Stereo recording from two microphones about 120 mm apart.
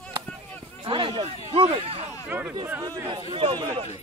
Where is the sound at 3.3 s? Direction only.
45° right (ahead or behind).